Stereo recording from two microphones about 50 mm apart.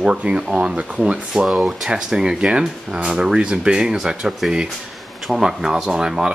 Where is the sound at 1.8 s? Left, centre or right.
Centre.